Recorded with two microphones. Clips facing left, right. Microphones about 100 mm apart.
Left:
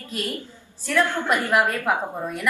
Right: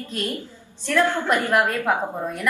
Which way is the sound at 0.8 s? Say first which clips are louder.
Right 2 dB; 15° left (ahead or behind).